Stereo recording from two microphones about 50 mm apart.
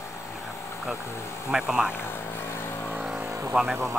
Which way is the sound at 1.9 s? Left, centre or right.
Left.